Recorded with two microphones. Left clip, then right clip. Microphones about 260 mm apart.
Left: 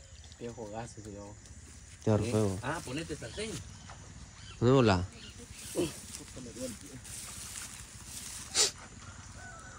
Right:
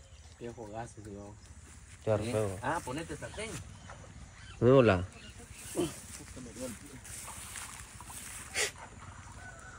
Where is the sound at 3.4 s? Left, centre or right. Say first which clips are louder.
Left 2 dB; centre.